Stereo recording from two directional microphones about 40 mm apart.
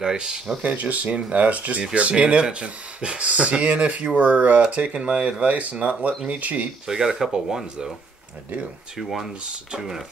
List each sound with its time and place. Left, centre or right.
0.0 s speech: centre
0.6 s speech: right
6.9 s speech: centre
8.9 s speech: centre